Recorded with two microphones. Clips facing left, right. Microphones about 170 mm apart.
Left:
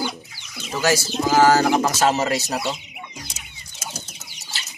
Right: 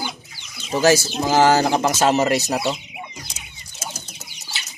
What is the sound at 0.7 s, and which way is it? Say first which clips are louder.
Speech: right 5 dB; 30° right (ahead or behind).